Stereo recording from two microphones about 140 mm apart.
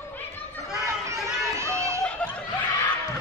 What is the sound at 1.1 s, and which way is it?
Run, 20° right (ahead or behind).